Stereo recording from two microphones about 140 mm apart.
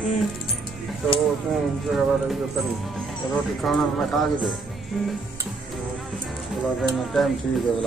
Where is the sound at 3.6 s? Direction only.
Centre (ahead or behind).